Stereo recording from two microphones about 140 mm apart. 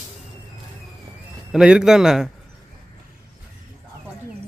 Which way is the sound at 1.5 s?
5° right (ahead or behind).